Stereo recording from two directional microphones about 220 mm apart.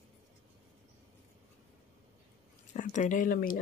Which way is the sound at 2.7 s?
35° left (ahead or behind).